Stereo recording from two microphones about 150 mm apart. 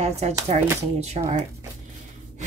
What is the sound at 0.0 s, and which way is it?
Speech, 45° right (ahead or behind).